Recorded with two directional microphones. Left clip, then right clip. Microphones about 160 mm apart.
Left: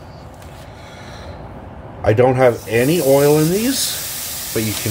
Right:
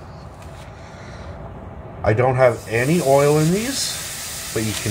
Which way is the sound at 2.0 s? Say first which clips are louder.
Left 3 dB; 75° left (ahead or behind).